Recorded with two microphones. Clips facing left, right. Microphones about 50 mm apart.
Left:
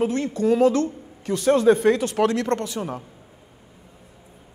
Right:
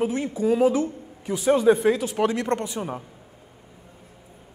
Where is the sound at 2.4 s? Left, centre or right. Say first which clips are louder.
Left 1 dB; centre.